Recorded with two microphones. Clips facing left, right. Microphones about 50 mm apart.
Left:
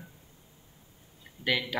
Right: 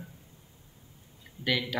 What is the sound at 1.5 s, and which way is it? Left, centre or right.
Speech, centre.